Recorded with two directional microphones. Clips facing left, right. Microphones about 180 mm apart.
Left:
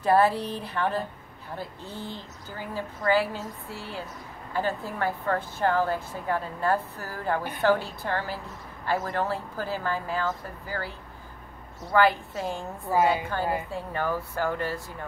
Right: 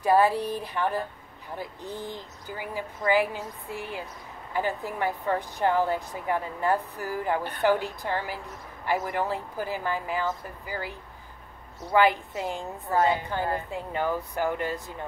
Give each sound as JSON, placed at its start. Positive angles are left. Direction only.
{"t": 0.0, "sound": "a woman's voice", "side_deg": -10}